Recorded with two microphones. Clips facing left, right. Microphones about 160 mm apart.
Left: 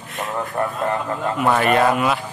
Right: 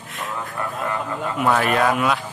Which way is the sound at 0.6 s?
55° left (ahead or behind).